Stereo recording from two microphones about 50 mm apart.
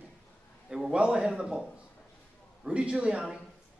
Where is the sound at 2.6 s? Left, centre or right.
Centre.